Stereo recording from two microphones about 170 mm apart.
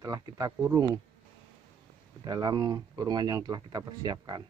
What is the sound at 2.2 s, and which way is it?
Speech, 25° right (ahead or behind).